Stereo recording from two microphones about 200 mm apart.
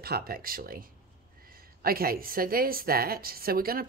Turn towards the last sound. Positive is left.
turn(degrees=-50)  # may be behind; listen again after turning